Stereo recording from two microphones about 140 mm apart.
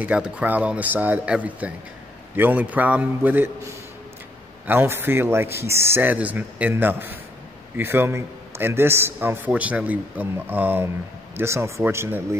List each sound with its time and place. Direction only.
0.0 s a man's voice: 10° right (ahead or behind)
4.6 s a man's voice: 15° right (ahead or behind)